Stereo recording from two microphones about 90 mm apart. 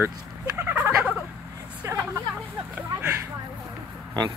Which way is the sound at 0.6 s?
30° right (ahead or behind).